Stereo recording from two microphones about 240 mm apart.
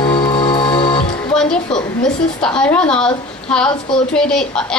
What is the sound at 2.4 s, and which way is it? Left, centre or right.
A woman's voice, centre.